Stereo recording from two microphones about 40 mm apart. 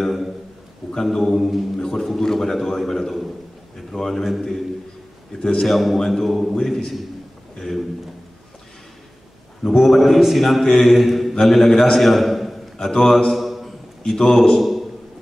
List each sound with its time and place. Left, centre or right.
0.0 s a sound: centre
1.0 s a man's voice: centre
1.8 s a man's voice: centre
5.4 s a man's voice: centre
5.7 s a man's voice: centre
6.5 s a man's voice: centre
9.7 s a man's voice: centre
10.8 s mantra: centre
11.4 s a man's voice: centre
12.0 s a sound: centre
12.7 s a man's voice: centre
13.3 s a sound: centre
14.5 s a man's voice: centre